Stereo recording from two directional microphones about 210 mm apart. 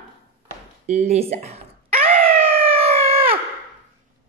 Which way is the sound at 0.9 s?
30° right (ahead or behind).